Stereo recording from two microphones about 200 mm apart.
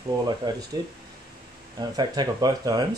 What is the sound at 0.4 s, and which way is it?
Speech, 20° right (ahead or behind).